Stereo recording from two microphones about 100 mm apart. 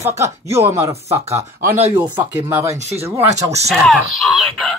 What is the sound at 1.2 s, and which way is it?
Speech, 90° right.